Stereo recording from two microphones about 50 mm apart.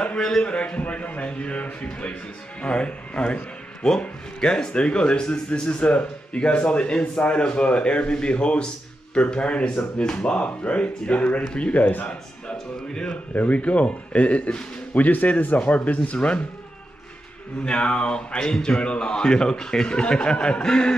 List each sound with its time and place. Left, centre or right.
0.4 s speech: left
12.4 s a man's voice: centre
13.3 s speech: left
17.6 s a man's voice: centre